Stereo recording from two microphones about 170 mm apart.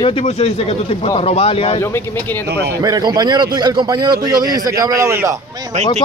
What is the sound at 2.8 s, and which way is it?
A man's voice, 25° right (ahead or behind).